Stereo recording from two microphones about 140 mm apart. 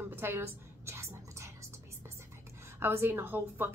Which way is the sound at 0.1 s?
15° right (ahead or behind).